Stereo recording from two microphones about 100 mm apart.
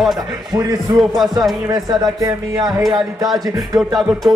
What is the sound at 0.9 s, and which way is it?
Speech, centre (ahead or behind).